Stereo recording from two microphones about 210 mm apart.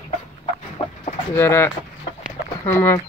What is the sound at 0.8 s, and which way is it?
Chicken, 25° left (ahead or behind).